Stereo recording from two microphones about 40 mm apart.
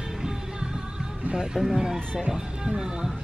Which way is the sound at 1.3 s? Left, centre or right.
Centre.